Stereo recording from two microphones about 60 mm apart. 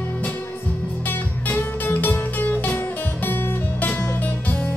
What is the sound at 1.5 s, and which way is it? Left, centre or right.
Music, left.